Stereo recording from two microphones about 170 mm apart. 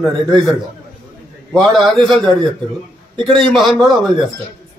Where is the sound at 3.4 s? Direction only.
Centre (ahead or behind).